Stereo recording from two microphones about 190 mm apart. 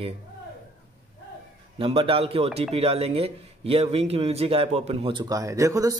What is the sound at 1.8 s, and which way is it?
Speech, 30° right (ahead or behind).